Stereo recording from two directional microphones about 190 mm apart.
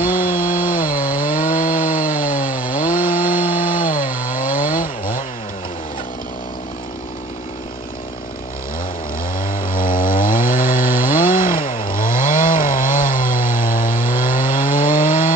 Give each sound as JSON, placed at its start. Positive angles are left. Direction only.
{"t": 0.0, "sound": "chainsaw", "side_deg": 45}
{"t": 0.4, "sound": "wood", "side_deg": 45}
{"t": 9.4, "sound": "chainsaw", "side_deg": 45}